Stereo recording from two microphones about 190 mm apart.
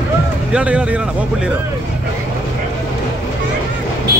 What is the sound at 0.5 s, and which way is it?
Speech, 5° right (ahead or behind).